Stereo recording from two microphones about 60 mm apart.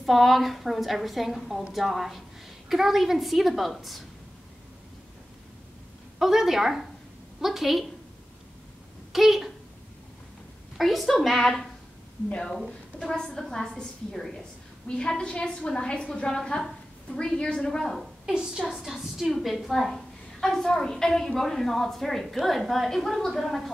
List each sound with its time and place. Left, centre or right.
0.0 s a woman's voice: centre
6.1 s a woman's voice: centre
9.1 s a woman's voice: centre
10.8 s a woman's voice: centre
18.2 s a woman's voice: centre